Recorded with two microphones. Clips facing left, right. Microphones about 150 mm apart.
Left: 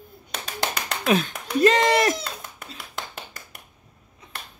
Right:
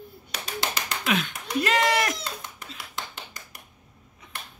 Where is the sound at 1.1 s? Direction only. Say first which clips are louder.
Left 5 dB; 35° left (ahead or behind).